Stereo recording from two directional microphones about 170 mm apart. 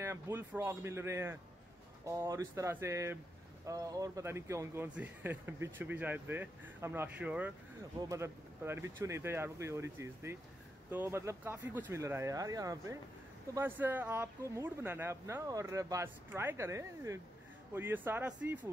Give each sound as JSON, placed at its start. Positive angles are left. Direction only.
{"t": 0.0, "sound": "speech", "side_deg": -15}